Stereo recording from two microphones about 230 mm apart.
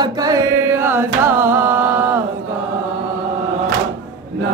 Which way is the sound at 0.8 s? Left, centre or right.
Centre.